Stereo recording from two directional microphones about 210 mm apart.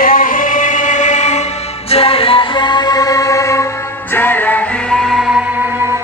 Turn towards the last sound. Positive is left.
turn(degrees=0)  # may be behind; listen again after turning